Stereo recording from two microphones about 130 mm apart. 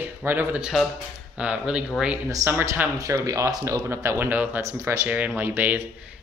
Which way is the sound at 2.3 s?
20° right (ahead or behind).